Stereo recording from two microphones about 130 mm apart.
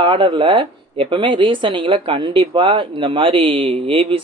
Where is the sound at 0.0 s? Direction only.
40° right (ahead or behind).